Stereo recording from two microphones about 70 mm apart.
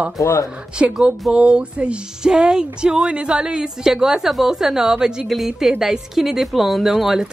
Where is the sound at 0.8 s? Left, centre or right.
Centre.